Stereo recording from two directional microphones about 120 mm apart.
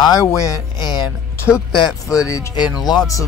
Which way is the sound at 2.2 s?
25° left (ahead or behind).